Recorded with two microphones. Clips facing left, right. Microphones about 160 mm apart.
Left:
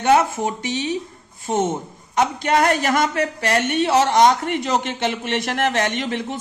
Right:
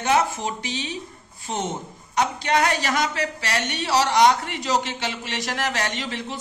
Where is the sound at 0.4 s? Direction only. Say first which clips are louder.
Left 5 dB; 50° left (ahead or behind).